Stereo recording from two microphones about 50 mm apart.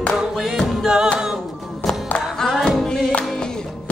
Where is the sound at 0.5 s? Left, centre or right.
Centre.